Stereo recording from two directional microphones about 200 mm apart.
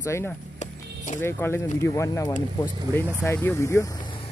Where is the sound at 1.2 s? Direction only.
10° left (ahead or behind).